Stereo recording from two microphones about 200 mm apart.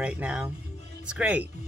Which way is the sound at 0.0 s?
5° right (ahead or behind).